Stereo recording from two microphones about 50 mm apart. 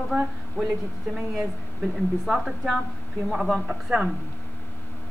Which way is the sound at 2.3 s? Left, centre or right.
Centre.